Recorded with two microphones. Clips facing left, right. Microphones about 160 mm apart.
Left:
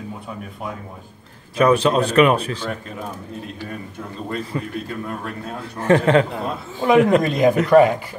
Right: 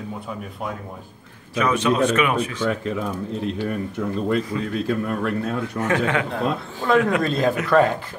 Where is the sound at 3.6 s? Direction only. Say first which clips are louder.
Right 7 dB; 85° right.